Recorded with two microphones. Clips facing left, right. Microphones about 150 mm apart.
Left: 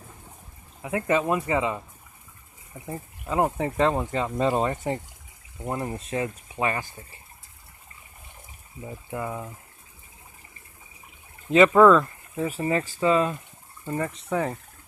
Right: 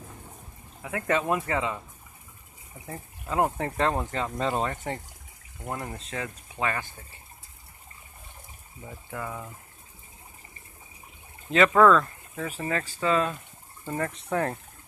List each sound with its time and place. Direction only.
0.8 s speech: 15° left (ahead or behind)
3.3 s speech: centre (ahead or behind)
8.8 s speech: 20° left (ahead or behind)
11.5 s speech: 5° left (ahead or behind)